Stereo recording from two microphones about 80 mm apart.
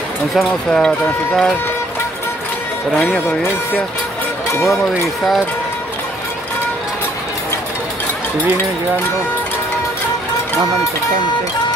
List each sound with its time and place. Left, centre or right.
0.7 s speech: centre
3.0 s speech: centre
4.6 s speech: centre